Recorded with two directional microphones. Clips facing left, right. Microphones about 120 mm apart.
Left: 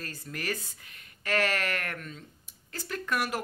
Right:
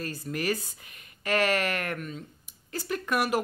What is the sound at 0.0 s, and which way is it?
Speech, 15° right (ahead or behind).